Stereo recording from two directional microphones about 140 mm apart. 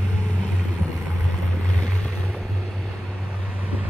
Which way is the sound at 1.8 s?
10° left (ahead or behind).